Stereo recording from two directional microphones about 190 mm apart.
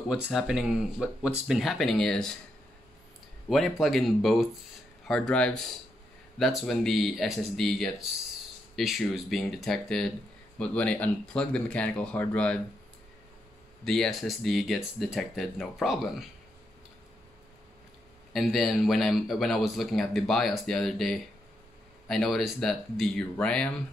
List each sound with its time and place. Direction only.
0.1 s a man's voice: 5° right (ahead or behind)
3.4 s a man's voice: centre (ahead or behind)
13.8 s a man's voice: centre (ahead or behind)
18.3 s a man's voice: centre (ahead or behind)